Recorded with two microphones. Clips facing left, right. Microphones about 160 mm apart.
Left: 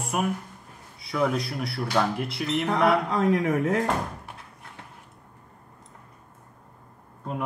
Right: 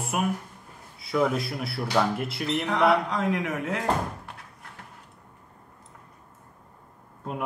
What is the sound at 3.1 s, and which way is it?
Speech, 40° left (ahead or behind).